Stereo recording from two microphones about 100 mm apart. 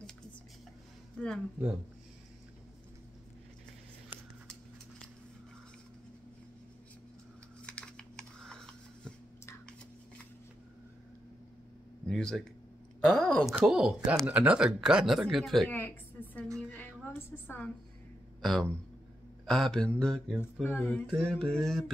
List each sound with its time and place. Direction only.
1.2 s speech: 10° left (ahead or behind)
4.5 s a sound: 5° left (ahead or behind)
7.6 s computer keyboard: 10° left (ahead or behind)
12.1 s speech: 5° left (ahead or behind)
13.7 s speech: 5° right (ahead or behind)
15.7 s a sound: 20° left (ahead or behind)
18.4 s speech: 5° left (ahead or behind)
20.6 s speech: 20° left (ahead or behind)
21.2 s speech: 5° left (ahead or behind)